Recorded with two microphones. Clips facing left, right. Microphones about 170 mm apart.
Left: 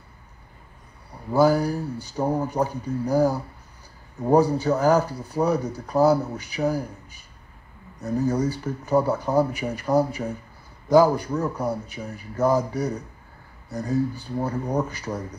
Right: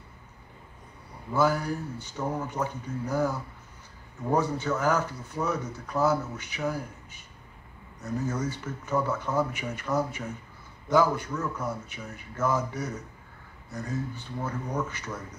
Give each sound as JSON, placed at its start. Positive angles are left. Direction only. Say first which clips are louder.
{"t": 1.3, "sound": "speech", "louder": "left 6 dB", "side_deg": 35}